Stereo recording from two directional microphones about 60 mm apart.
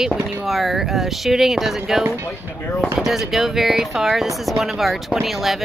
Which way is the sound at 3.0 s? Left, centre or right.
Centre.